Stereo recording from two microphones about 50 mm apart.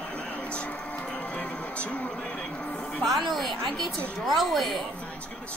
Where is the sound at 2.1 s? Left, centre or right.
Centre.